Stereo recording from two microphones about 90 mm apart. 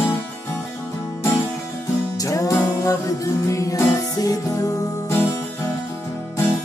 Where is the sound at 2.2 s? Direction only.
40° left (ahead or behind).